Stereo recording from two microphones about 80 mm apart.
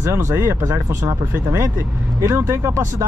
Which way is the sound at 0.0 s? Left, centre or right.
Right.